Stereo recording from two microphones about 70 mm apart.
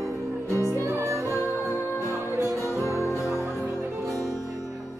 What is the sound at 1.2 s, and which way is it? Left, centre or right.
Music, left.